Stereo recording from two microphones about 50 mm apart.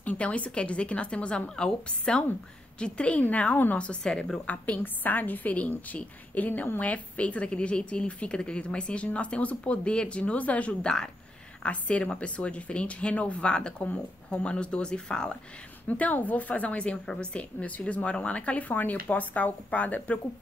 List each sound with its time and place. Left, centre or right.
0.0 s a woman's voice: left
4.8 s a woman's voice: left; by 15.3 s centre
15.9 s a woman's voice: left